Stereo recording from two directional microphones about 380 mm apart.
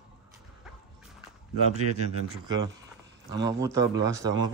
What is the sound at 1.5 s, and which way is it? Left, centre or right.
Speech, right.